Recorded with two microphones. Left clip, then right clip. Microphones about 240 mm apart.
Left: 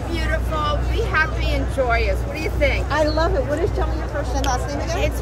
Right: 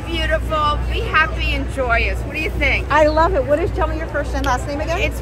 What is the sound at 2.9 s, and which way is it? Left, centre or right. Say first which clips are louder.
Speech: right 6 dB; centre.